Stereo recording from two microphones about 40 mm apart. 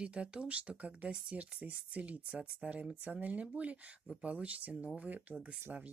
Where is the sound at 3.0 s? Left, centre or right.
Right.